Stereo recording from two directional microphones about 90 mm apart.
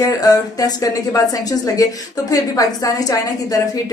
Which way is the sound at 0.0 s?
40° left (ahead or behind).